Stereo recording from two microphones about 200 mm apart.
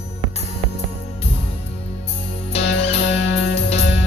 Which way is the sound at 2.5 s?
30° left (ahead or behind).